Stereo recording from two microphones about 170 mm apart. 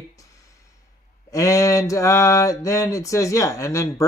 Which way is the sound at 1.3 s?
20° left (ahead or behind).